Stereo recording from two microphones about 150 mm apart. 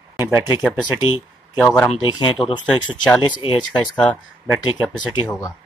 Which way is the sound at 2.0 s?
30° left (ahead or behind).